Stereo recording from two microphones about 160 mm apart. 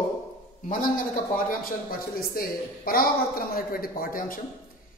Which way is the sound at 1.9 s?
65° left (ahead or behind).